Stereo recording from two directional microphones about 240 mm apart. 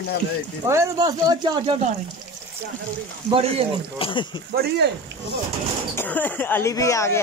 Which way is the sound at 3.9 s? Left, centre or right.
Left.